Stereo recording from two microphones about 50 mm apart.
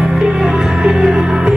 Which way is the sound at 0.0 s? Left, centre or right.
Centre.